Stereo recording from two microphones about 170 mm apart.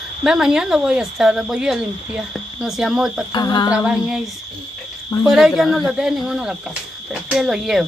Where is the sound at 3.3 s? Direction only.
25° left (ahead or behind).